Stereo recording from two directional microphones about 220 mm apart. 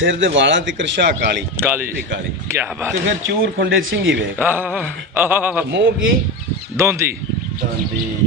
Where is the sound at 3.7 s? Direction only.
60° right (ahead or behind).